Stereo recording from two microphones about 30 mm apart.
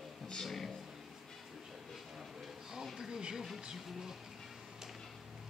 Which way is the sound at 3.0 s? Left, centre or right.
Right.